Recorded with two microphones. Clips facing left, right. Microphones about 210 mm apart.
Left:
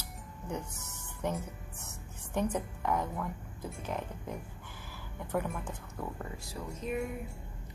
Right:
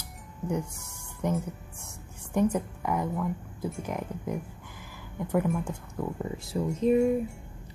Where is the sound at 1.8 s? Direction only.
10° right (ahead or behind).